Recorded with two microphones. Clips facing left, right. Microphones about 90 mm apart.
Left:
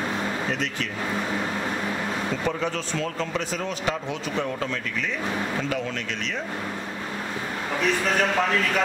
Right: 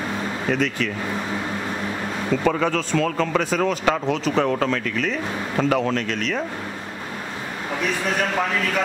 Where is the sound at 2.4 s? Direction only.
80° right.